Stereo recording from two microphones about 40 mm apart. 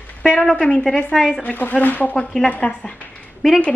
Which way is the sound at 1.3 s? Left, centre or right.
Left.